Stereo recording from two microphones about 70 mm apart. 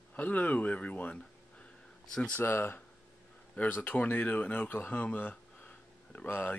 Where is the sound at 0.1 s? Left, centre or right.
Left.